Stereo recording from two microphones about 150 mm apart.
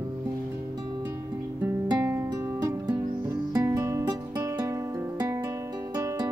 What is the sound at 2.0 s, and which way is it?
Music, 20° right (ahead or behind).